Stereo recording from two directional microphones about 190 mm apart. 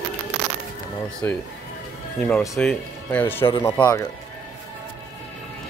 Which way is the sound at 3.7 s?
10° left (ahead or behind).